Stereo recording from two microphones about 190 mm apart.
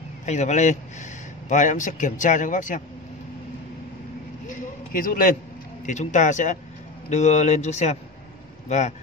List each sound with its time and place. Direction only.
0.2 s speech: 40° left (ahead or behind)
4.5 s a sound: 45° left (ahead or behind)
5.9 s speech: 40° left (ahead or behind)